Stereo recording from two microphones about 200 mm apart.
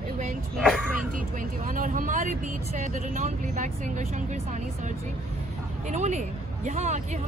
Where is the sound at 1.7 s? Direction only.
40° right (ahead or behind).